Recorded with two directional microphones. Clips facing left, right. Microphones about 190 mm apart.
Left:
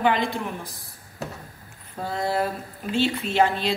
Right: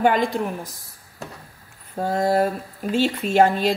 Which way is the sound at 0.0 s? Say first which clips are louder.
Right 3 dB; 45° right (ahead or behind).